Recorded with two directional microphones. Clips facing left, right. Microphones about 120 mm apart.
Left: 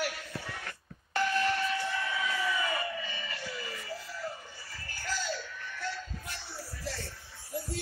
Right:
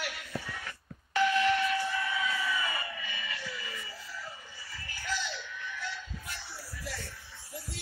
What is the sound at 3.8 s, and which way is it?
Music, 55° left (ahead or behind).